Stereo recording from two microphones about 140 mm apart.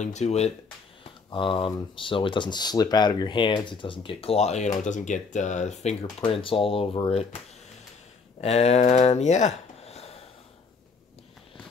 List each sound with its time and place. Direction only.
0.0 s speech: 55° left (ahead or behind)
1.3 s speech: 35° left (ahead or behind); by 5.9 s 55° left (ahead or behind)
6.2 s speech: 40° left (ahead or behind)
8.4 s speech: 50° left (ahead or behind)